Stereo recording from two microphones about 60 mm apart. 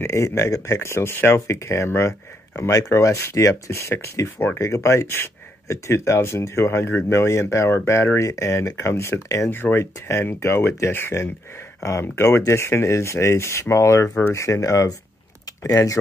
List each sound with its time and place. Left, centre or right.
0.0 s speech: left
7.1 s speech: left
9.5 s speech: left
9.9 s speech: left
14.0 s speech: left
14.3 s speech: left